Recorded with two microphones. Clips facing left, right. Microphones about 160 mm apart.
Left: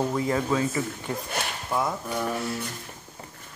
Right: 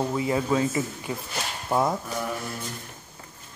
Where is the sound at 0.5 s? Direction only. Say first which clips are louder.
Right 1 dB; 20° right (ahead or behind).